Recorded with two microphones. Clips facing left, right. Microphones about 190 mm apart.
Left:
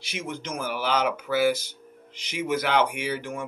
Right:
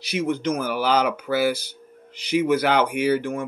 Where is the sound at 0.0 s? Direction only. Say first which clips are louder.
Right 10 dB; 35° right (ahead or behind).